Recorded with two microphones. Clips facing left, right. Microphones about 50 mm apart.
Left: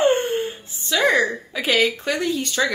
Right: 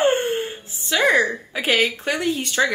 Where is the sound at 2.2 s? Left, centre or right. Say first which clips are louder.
Right 3 dB; right.